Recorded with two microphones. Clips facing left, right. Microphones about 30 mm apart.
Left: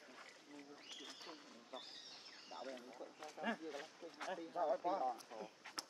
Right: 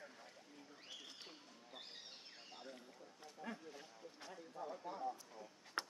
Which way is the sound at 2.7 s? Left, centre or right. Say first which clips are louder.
Left 5 dB; left.